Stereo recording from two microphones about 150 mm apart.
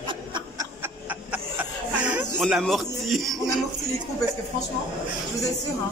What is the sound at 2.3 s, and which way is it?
A man's voice, centre (ahead or behind).